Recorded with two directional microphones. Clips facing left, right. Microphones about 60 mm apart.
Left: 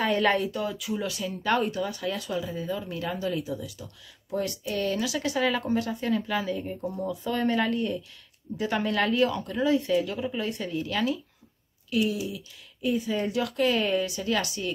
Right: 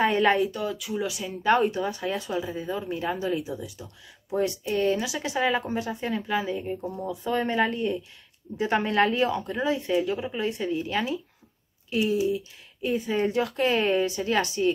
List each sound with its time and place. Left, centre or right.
0.0 s speech: right
0.4 s speech: centre
1.0 s speech: centre
6.8 s speech: centre
7.1 s speech: centre